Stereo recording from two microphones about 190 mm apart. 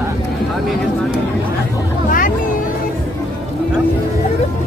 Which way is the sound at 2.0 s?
45° left (ahead or behind).